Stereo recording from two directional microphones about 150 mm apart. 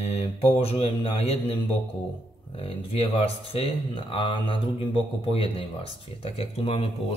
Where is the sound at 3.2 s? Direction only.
35° left (ahead or behind).